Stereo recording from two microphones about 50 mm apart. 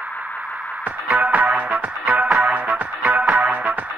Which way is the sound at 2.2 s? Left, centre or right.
Centre.